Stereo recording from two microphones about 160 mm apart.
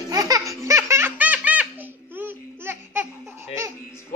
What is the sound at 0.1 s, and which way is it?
Baby laughter, 20° right (ahead or behind).